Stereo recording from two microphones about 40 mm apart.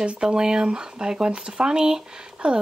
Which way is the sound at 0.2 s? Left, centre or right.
Centre.